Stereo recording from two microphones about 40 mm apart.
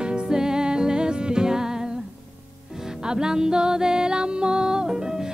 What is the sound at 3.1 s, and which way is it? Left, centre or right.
Music, centre.